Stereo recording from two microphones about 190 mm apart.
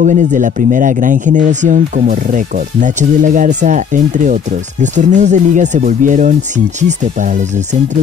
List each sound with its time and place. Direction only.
0.0 s speech: 40° right (ahead or behind)